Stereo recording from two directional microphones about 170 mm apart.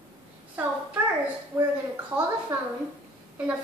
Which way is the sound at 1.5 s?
10° right (ahead or behind).